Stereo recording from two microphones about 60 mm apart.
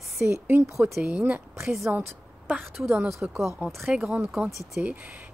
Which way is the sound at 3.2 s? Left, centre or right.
Centre.